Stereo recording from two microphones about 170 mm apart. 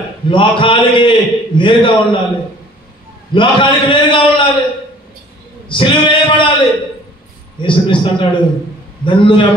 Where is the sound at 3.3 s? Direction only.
30° left (ahead or behind).